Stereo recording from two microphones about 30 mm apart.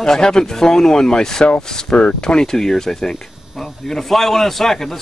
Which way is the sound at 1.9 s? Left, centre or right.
Left.